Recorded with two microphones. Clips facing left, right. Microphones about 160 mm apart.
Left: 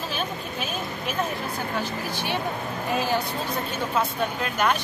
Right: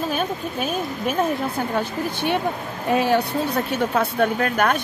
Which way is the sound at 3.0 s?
70° right (ahead or behind).